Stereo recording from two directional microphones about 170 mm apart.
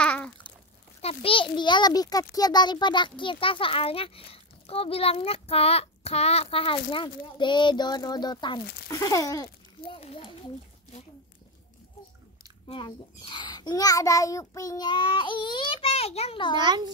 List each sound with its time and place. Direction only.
0.0 s babbling: 5° left (ahead or behind)
1.0 s a child's voice: 30° left (ahead or behind)
9.9 s a child's voice: 35° left (ahead or behind)
12.6 s a child's voice: 30° left (ahead or behind)
16.5 s a child's voice: 25° right (ahead or behind)